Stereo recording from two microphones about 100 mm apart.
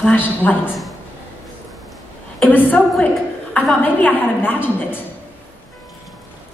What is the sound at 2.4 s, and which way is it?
Speech, 15° left (ahead or behind).